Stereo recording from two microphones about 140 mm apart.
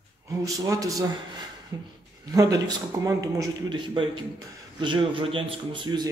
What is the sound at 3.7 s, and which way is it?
A man's voice, 35° right (ahead or behind).